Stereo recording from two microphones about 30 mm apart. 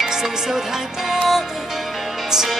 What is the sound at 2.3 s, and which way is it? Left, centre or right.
Music, centre.